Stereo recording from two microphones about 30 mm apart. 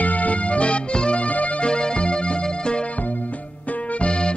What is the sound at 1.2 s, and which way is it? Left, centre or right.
Music, left.